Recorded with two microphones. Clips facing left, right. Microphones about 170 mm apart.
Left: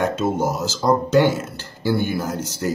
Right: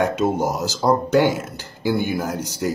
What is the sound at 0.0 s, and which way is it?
Speech, 15° right (ahead or behind).